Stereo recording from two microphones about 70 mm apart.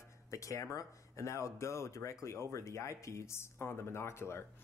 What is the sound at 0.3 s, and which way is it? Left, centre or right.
Speech, left.